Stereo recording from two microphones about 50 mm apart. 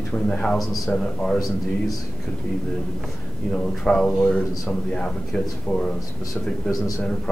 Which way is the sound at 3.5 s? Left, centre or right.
Centre.